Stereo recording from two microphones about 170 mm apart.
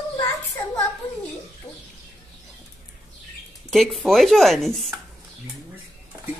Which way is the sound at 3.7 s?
Centre (ahead or behind).